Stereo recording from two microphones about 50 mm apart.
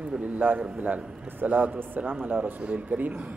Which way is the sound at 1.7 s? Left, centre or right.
Right.